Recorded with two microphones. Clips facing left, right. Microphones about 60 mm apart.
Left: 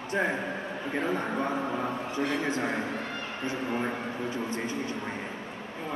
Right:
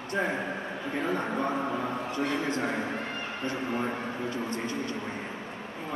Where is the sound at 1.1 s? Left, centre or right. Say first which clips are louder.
Even; centre.